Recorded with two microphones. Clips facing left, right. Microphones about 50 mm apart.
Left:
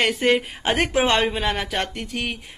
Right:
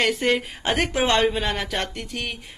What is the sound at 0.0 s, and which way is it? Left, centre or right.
Speech, centre.